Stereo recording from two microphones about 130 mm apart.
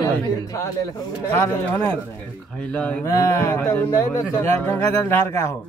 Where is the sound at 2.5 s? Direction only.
5° left (ahead or behind).